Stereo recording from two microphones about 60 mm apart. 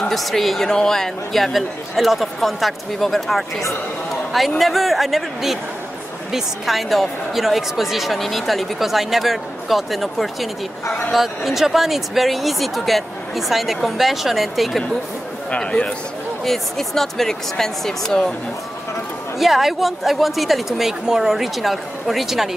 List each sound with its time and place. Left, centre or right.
0.1 s speech: centre
15.5 s a man's voice: centre
16.4 s speech: centre
19.3 s speech: centre